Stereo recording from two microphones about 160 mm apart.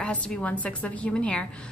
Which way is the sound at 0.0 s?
5° left (ahead or behind).